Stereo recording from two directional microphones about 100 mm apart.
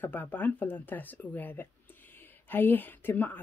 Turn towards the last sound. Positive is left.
turn(degrees=20)  # may be behind; listen again after turning